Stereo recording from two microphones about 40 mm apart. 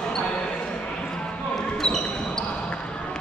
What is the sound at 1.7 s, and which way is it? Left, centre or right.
Basketball bounce, centre.